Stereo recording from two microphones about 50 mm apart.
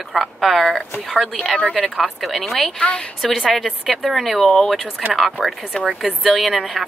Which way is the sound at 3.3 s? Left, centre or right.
Centre.